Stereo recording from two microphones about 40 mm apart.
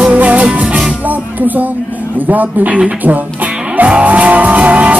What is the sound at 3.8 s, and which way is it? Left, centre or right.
Music, right.